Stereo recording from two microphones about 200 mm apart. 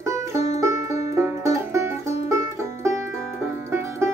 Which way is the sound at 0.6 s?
15° right (ahead or behind).